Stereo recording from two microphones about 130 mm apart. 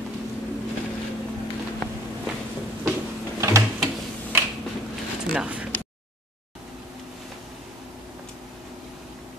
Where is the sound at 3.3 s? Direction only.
20° right (ahead or behind).